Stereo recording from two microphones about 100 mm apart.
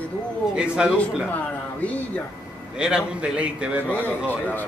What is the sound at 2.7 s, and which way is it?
A man's voice, 10° right (ahead or behind).